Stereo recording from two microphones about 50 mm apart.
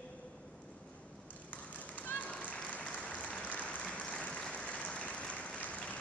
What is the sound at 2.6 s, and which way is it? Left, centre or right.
Applause, left.